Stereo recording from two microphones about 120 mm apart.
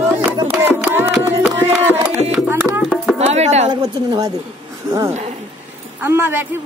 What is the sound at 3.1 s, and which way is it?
Chopping, 65° right (ahead or behind).